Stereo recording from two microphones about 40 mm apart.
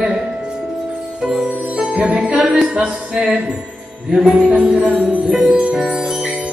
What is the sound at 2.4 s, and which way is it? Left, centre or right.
Music, centre.